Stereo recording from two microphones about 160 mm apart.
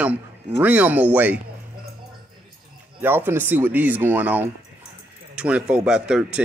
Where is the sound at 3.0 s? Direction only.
10° right (ahead or behind).